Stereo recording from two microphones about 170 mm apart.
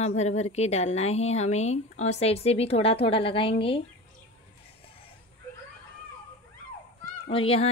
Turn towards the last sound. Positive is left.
turn(degrees=35)  # may be behind; listen again after turning